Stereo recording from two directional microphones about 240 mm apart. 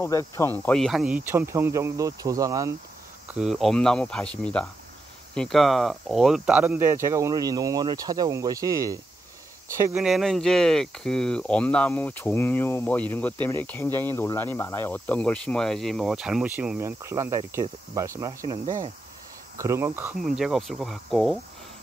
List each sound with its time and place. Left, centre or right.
0.0 s speech: centre
3.3 s speech: centre
10.0 s speech: centre
19.6 s speech: centre